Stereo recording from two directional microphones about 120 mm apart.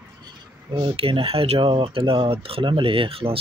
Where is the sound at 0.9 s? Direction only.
55° right (ahead or behind).